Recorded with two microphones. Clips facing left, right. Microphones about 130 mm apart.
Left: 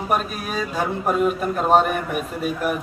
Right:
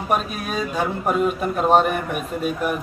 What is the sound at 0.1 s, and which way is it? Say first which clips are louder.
A man's voice: right 1 dB; centre (ahead or behind).